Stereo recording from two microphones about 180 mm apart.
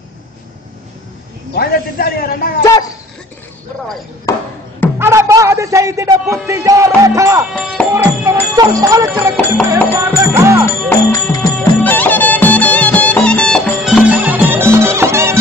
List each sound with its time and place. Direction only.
1.5 s a man's voice: 60° left (ahead or behind)
4.9 s speech: 15° right (ahead or behind)
7.5 s music: 5° left (ahead or behind)
7.9 s speech: 15° right (ahead or behind)
9.9 s music: 15° right (ahead or behind)
10.9 s music: 15° left (ahead or behind)
13.8 s music: 5° right (ahead or behind)